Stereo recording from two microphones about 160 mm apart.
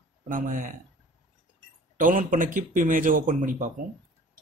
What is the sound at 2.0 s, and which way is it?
A man's voice, 55° right (ahead or behind).